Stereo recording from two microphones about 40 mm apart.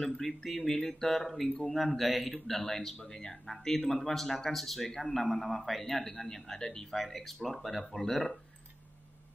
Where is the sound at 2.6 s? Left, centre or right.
Centre.